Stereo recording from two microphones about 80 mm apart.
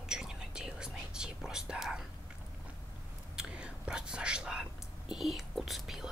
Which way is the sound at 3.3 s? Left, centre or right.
Centre.